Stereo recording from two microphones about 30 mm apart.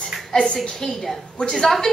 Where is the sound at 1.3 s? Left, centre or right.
Left.